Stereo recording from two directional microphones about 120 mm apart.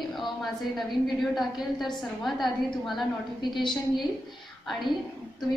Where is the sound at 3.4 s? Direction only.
40° left (ahead or behind).